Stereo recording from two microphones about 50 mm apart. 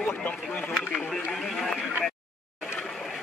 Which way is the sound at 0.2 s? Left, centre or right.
Left.